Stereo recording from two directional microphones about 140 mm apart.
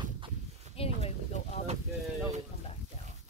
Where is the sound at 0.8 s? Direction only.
45° left (ahead or behind).